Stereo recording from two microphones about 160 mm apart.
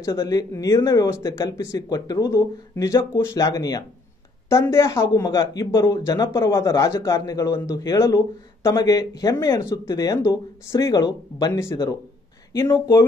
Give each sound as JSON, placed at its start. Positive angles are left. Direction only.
{"t": 0.0, "sound": "speech", "side_deg": 20}